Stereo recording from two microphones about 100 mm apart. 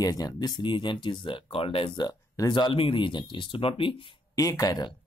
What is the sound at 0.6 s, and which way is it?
Speech, 50° left (ahead or behind).